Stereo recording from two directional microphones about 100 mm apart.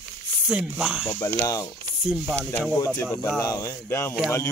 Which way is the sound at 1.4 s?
35° left (ahead or behind).